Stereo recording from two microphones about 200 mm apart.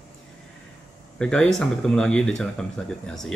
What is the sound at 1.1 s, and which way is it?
Speech, 5° left (ahead or behind).